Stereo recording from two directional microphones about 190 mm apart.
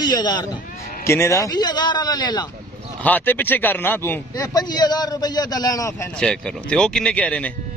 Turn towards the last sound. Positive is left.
turn(degrees=5)  # may be behind; listen again after turning